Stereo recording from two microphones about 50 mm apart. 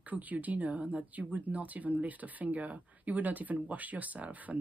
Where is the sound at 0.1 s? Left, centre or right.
Right.